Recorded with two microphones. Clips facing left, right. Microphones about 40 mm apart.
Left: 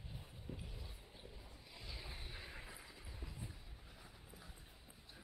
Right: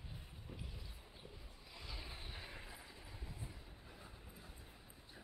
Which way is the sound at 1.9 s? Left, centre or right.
Centre.